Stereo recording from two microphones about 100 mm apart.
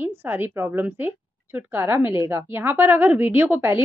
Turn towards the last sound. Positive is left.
turn(degrees=-25)  # may be behind; listen again after turning